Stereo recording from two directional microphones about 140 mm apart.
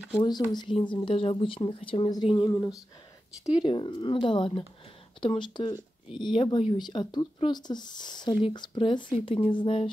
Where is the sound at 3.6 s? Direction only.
35° left (ahead or behind).